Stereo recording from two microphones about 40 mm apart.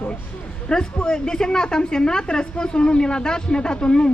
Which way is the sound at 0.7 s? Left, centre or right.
Centre.